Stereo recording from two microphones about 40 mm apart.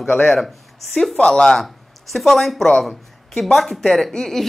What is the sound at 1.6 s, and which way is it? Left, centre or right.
Speech, centre.